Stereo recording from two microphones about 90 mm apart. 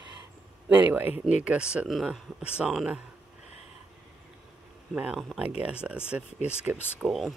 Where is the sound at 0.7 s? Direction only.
20° right (ahead or behind).